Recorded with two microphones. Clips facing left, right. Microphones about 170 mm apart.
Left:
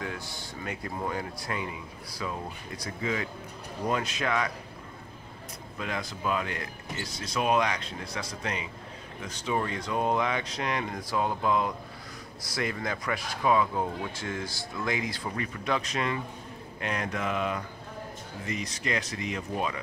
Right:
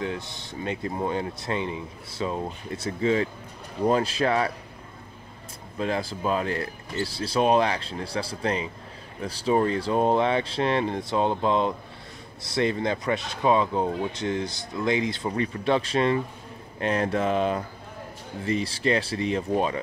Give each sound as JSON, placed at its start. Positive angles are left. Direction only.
{"t": 0.0, "sound": "speech", "side_deg": -25}
{"t": 5.8, "sound": "speech", "side_deg": -30}